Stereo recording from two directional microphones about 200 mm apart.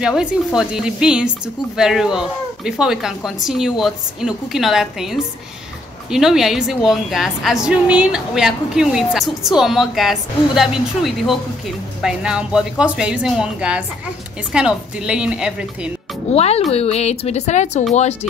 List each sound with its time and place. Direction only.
0.0 s a woman's voice: centre (ahead or behind)
16.3 s a woman's voice: 30° left (ahead or behind)